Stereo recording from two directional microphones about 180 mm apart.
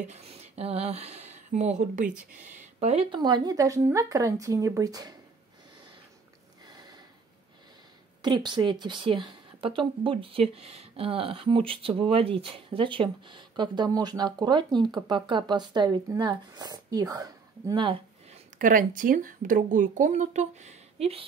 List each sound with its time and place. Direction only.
0.0 s a woman's voice: 35° right (ahead or behind); by 5.1 s 20° right (ahead or behind)
6.6 s a sound: 25° right (ahead or behind)
8.2 s a woman's voice: 25° right (ahead or behind)
18.6 s speech: 45° right (ahead or behind)